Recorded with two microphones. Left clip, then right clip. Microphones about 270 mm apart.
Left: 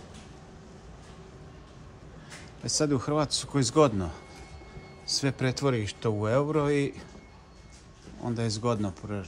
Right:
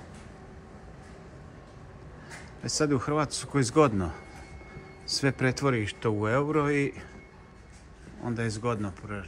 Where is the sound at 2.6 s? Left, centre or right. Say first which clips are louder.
Even; centre.